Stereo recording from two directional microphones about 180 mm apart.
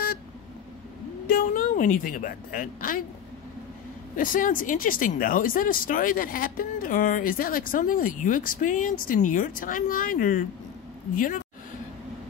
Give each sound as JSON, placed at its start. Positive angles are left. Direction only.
{"t": 1.2, "sound": "speech", "side_deg": 55}
{"t": 4.2, "sound": "speech", "side_deg": 45}